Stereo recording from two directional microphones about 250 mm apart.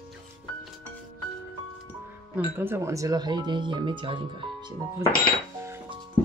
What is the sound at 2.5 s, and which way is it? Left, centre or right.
Speech, centre.